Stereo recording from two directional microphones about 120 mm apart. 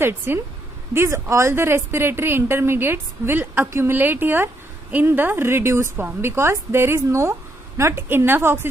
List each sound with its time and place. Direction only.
0.0 s a woman's voice: 20° right (ahead or behind)